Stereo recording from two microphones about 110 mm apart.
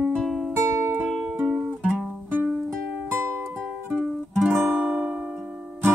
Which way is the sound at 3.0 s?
20° right (ahead or behind).